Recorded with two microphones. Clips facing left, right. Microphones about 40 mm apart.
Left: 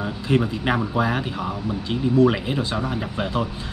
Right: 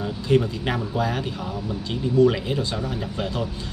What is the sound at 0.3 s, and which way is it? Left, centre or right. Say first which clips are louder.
Speech: even; centre.